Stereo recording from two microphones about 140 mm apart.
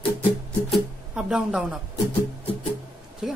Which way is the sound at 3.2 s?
5° right (ahead or behind).